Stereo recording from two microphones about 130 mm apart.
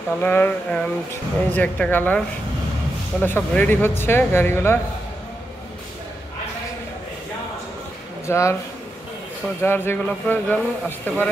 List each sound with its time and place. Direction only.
0.2 s speech: 15° left (ahead or behind)
8.3 s speech: 20° left (ahead or behind)
9.6 s speech: 15° left (ahead or behind)